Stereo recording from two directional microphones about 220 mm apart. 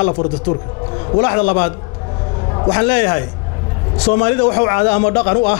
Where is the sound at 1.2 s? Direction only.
15° left (ahead or behind).